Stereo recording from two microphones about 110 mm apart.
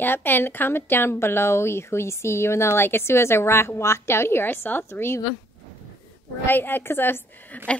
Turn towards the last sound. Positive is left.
turn(degrees=15)  # may be behind; listen again after turning